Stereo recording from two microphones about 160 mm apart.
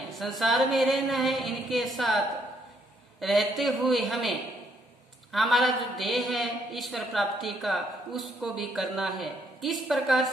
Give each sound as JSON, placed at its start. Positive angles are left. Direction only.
{"t": 0.1, "sound": "a man's voice", "side_deg": 0}